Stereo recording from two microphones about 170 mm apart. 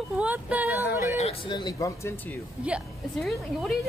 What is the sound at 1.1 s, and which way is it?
Speech, 35° left (ahead or behind).